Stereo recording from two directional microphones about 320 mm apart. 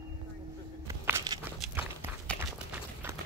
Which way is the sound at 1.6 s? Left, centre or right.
Centre.